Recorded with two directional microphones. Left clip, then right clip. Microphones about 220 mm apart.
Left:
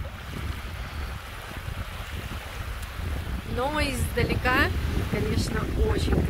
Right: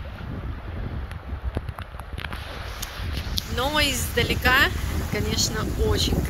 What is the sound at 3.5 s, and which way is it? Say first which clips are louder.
Speech: right 4 dB; centre (ahead or behind).